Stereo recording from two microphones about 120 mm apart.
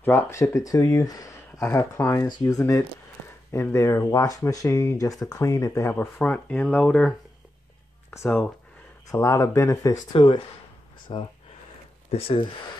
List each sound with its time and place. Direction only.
0.0 s speech: 20° left (ahead or behind)
9.1 s speech: 25° left (ahead or behind)
10.1 s speech: 40° left (ahead or behind)